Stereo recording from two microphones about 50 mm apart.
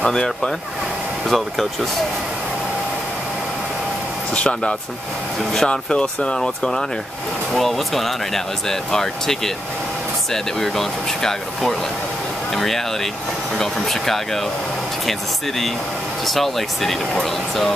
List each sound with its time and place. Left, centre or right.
0.0 s speech: centre
4.3 s speech: left; by 17.7 s centre